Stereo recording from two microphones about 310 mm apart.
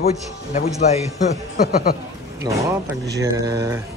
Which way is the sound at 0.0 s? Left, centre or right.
Left.